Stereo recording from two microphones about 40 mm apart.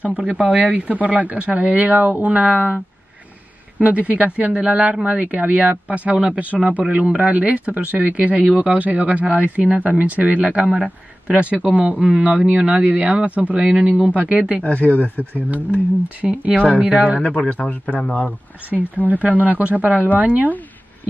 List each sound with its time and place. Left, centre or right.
0.4 s speech: right
3.8 s speech: right
10.7 s a man's voice: right
11.4 s speech: right
14.6 s a man's voice: left
16.2 s speech: right
16.5 s a man's voice: left
16.8 s a man's voice: right
17.2 s a man's voice: left
19.2 s speech: right